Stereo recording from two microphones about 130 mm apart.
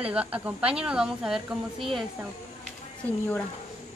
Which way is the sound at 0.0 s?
10° right (ahead or behind).